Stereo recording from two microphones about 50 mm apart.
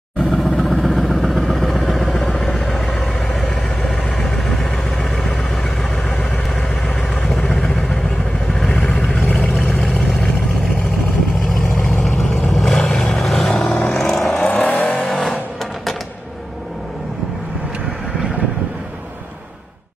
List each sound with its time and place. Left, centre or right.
0.2 s vehicle: centre
7.5 s vehicle: centre
8.6 s vehicle: left
9.8 s vehicle: centre
11.8 s vehicle: centre
14.4 s vehicle: left